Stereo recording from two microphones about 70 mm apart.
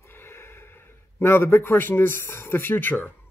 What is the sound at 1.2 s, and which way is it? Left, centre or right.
Speech, left.